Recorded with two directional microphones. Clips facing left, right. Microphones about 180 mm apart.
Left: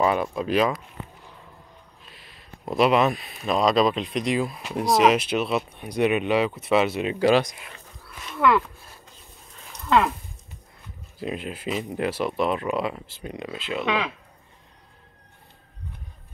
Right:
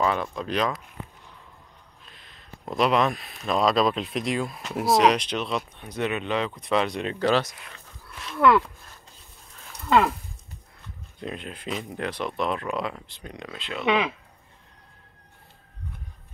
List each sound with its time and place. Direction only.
0.0 s speech: 10° left (ahead or behind)
2.0 s speech: 5° left (ahead or behind)
8.2 s a sound: centre (ahead or behind)
11.1 s speech: 5° left (ahead or behind)
13.8 s speech: 20° right (ahead or behind)